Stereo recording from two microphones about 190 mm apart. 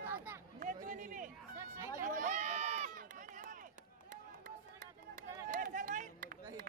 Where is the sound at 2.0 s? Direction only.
45° right (ahead or behind).